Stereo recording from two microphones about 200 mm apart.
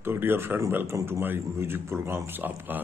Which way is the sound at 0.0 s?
10° right (ahead or behind).